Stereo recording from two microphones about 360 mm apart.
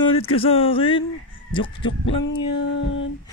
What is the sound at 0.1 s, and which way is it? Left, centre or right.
Speech, centre.